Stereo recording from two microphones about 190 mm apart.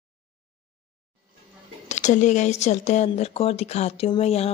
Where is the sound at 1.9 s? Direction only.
40° left (ahead or behind).